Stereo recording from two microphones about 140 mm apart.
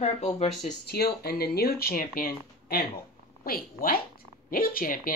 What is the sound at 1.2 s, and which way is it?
Speech, 90° left.